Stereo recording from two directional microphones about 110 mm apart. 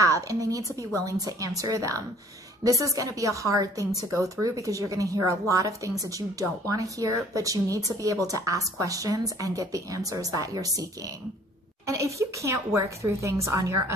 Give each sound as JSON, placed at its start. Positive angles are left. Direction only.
{"t": 0.0, "sound": "a woman's voice", "side_deg": -30}